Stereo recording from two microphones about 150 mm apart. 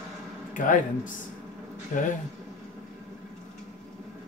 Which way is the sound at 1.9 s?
60° left (ahead or behind).